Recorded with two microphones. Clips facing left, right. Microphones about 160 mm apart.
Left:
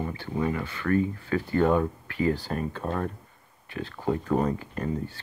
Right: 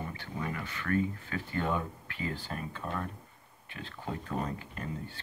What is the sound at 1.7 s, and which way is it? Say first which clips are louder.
Speech: left 9 dB; 50° left (ahead or behind).